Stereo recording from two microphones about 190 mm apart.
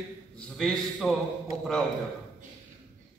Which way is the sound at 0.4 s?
5° left (ahead or behind).